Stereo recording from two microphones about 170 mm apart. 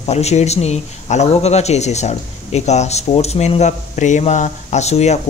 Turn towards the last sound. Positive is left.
turn(degrees=40)  # may be behind; listen again after turning